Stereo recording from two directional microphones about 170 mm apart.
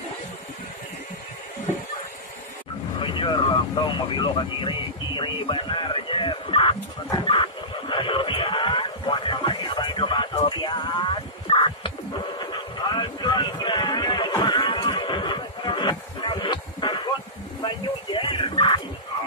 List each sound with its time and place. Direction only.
3.0 s vehicle: 30° left (ahead or behind)
17.6 s dog: 30° left (ahead or behind)